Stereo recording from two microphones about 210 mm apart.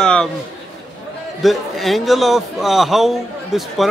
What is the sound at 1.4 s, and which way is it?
A man's voice, centre (ahead or behind).